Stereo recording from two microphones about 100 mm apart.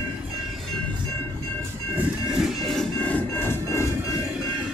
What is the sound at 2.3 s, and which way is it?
Music, centre (ahead or behind).